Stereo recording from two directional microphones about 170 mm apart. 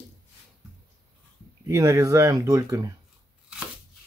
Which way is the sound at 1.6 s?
20° right (ahead or behind).